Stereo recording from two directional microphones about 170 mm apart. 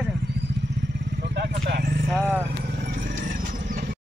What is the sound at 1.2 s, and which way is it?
Vehicle, 80° right.